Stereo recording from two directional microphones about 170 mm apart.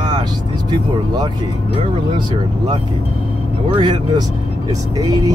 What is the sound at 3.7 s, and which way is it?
Speech, 25° right (ahead or behind).